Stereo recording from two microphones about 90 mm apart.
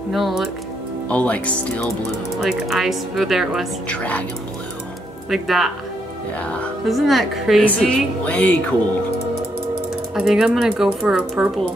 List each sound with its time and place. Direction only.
0.1 s speech: centre (ahead or behind)
1.0 s speech: 15° left (ahead or behind)
2.3 s speech: centre (ahead or behind)
3.9 s speech: 15° left (ahead or behind)
5.3 s speech: centre (ahead or behind)
6.9 s speech: centre (ahead or behind)
7.6 s speech: 15° left (ahead or behind)
10.1 s speech: 5° right (ahead or behind)